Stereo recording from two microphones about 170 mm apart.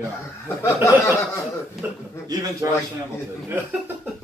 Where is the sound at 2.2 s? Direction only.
20° right (ahead or behind).